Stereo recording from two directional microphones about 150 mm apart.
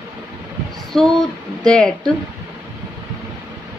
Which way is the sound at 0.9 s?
Centre (ahead or behind).